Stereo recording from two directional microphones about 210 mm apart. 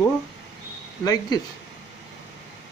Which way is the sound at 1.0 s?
20° left (ahead or behind).